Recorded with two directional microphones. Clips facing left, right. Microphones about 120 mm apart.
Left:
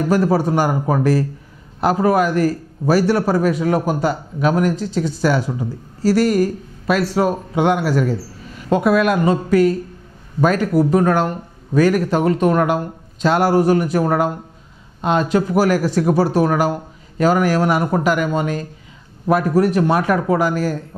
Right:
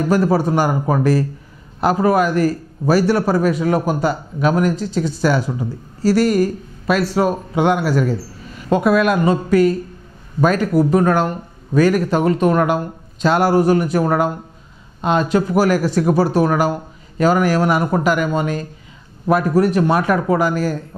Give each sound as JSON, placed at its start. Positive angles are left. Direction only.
{"t": 0.0, "sound": "a man's voice", "side_deg": -15}